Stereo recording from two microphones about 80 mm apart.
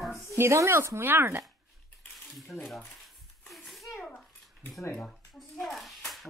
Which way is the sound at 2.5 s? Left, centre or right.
Centre.